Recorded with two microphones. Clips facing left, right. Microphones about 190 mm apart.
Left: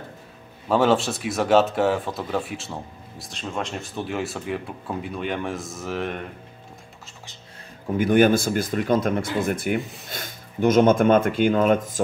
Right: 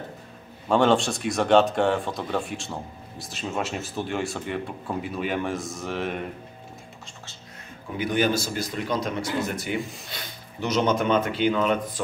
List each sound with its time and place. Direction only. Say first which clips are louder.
0.7 s speech: left 1 dB; 5° left (ahead or behind)
8.0 s speech: left 6 dB; 50° left (ahead or behind)